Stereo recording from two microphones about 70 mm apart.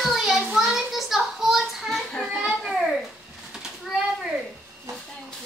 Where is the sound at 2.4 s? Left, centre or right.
Centre.